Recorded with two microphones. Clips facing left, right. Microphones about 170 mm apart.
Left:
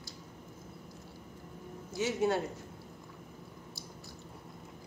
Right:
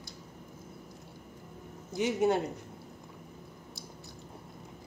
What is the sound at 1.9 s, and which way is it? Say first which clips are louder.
Speech: right 3 dB; 20° right (ahead or behind).